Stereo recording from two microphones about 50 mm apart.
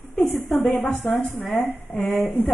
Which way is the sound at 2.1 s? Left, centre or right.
Left.